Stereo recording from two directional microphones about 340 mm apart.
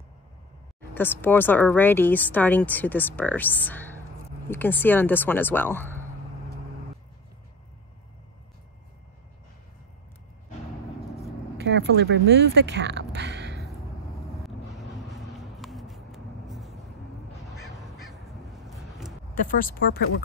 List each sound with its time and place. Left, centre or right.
0.9 s speech: centre
11.5 s speech: right
15.0 s vehicle: centre
17.6 s crow: centre
19.3 s speech: left